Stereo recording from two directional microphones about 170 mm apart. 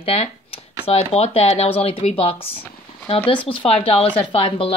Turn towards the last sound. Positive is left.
turn(degrees=35)  # may be behind; listen again after turning